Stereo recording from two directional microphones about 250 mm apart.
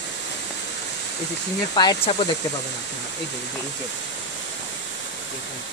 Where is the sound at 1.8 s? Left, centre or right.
Centre.